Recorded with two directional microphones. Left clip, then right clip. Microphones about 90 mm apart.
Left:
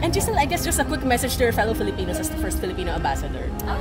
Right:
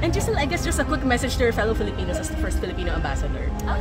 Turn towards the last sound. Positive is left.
turn(degrees=-5)  # may be behind; listen again after turning